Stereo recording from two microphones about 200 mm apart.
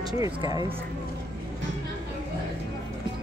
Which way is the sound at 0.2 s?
20° right (ahead or behind).